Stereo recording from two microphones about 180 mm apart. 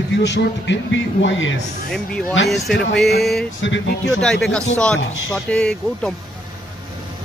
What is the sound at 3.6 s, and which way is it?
Speech, 90° left.